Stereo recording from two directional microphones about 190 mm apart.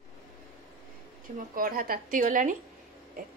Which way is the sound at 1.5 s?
50° right (ahead or behind).